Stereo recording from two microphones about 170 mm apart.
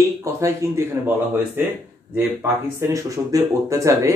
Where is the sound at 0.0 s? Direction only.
20° right (ahead or behind).